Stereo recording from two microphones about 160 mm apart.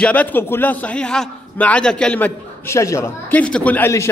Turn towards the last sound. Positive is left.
turn(degrees=15)  # may be behind; listen again after turning